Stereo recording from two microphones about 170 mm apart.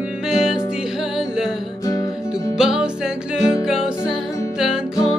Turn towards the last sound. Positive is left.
turn(degrees=-5)  # may be behind; listen again after turning